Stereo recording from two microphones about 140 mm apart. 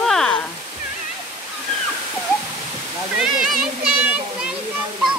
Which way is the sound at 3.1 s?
5° right (ahead or behind).